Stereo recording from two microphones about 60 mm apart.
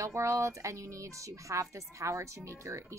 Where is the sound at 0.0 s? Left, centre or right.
Right.